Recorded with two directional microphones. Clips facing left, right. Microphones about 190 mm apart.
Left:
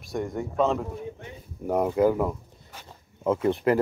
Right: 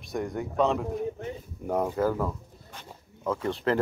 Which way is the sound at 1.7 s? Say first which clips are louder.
Left 4 dB; 15° left (ahead or behind).